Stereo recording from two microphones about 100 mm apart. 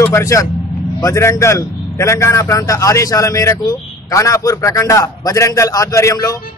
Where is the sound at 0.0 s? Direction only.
30° left (ahead or behind).